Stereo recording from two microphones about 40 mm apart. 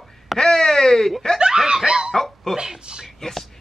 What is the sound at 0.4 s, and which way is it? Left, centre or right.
Wail, centre.